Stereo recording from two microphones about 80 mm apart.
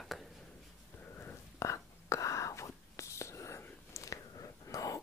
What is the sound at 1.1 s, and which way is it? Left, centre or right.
Whispering, left.